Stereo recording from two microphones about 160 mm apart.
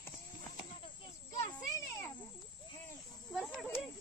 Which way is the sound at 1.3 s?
25° left (ahead or behind).